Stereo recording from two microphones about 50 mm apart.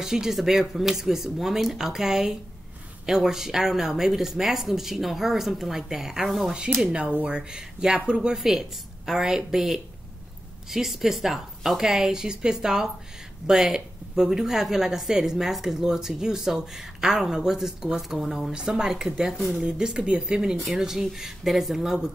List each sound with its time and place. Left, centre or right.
0.0 s a woman's voice: centre
6.8 s a woman's voice: centre
8.4 s a woman's voice: centre
18.5 s a woman's voice: centre
20.5 s a woman's voice: centre